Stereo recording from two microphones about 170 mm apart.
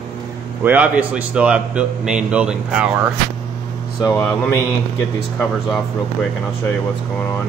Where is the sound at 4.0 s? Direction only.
15° left (ahead or behind).